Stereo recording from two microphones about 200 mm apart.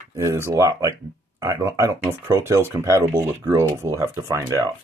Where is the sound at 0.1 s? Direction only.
15° right (ahead or behind).